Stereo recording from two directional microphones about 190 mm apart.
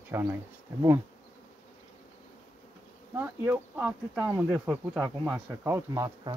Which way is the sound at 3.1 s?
10° right (ahead or behind).